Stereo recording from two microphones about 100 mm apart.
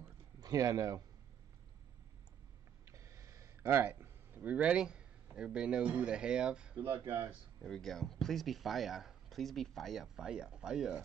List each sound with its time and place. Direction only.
0.4 s speech: 40° right (ahead or behind)
2.8 s a sound: 30° right (ahead or behind)
3.6 s speech: 20° right (ahead or behind)
7.6 s speech: 5° left (ahead or behind)